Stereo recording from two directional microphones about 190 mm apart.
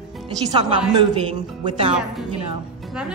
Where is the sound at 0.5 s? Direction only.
25° right (ahead or behind).